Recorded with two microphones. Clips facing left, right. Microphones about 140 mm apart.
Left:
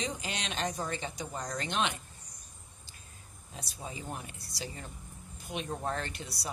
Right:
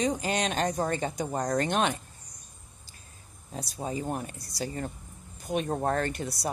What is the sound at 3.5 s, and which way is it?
Speech, 40° right (ahead or behind).